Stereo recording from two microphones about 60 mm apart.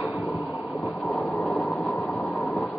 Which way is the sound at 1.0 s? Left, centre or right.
Centre.